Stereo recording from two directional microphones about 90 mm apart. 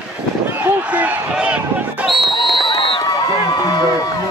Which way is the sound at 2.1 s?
Centre (ahead or behind).